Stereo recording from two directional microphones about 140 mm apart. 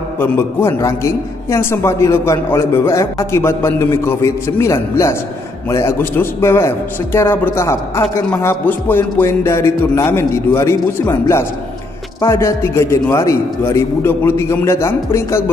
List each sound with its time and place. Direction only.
0.2 s a man's voice: 15° left (ahead or behind)